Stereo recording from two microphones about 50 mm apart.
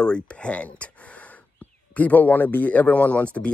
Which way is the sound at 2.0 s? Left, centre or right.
Left.